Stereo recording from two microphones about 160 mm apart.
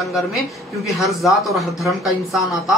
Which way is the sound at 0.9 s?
Centre (ahead or behind).